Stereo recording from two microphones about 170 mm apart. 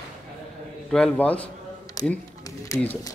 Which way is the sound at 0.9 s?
5° left (ahead or behind).